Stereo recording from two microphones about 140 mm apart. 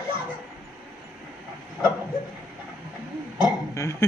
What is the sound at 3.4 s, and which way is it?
Burping, 25° left (ahead or behind).